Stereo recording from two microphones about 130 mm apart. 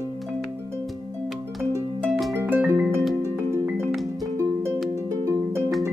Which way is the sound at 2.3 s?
15° right (ahead or behind).